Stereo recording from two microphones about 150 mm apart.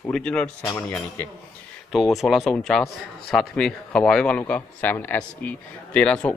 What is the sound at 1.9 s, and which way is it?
A man's voice, centre (ahead or behind).